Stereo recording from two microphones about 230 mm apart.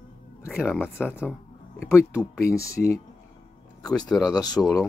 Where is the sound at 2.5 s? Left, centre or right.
Centre.